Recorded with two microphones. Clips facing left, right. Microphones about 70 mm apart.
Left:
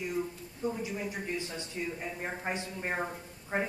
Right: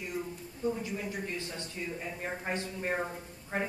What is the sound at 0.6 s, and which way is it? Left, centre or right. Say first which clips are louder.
A woman's voice: right 1 dB; centre.